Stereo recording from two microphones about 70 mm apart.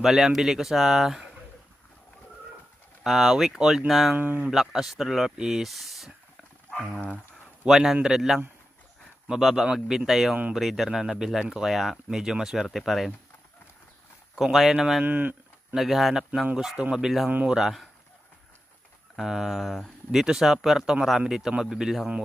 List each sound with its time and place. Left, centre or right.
0.0 s speech: centre
3.0 s speech: centre
7.6 s speech: centre
14.3 s speech: centre
15.0 s speech: right
15.7 s speech: centre
19.1 s speech: centre